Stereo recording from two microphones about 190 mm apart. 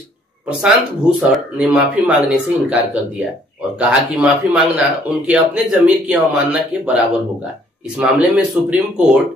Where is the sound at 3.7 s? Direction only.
5° right (ahead or behind).